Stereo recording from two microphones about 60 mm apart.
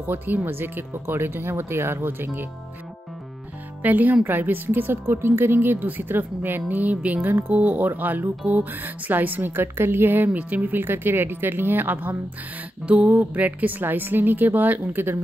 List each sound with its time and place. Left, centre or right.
0.0 s a woman's voice: right
3.8 s a woman's voice: right